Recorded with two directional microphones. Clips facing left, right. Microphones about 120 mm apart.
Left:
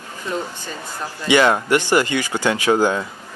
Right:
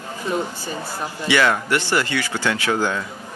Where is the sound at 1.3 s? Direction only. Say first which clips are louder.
Left 4 dB; 20° left (ahead or behind).